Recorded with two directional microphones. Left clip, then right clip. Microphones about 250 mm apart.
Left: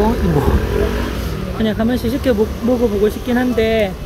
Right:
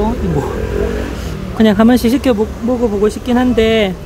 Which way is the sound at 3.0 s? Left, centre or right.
Centre.